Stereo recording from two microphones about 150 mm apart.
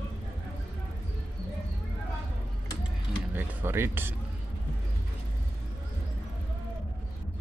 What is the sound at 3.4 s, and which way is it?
Speech, 15° right (ahead or behind).